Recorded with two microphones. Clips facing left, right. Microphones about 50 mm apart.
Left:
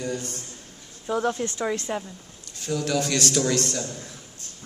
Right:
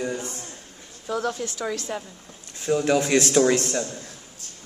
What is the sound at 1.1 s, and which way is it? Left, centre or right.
Speech, left.